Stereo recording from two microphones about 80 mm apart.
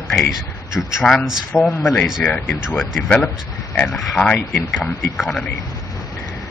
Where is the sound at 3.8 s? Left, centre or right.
Centre.